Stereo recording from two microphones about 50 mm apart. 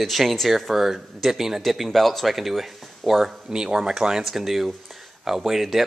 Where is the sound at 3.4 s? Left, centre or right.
Centre.